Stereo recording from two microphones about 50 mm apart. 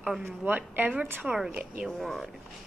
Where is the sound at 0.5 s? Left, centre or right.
Right.